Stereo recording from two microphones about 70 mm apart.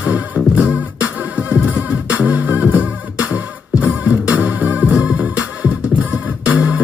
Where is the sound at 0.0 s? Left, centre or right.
Right.